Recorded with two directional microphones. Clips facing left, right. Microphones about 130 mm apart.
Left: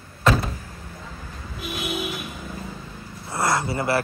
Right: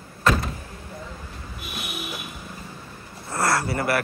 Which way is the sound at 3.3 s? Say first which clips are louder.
Even; 20° left (ahead or behind).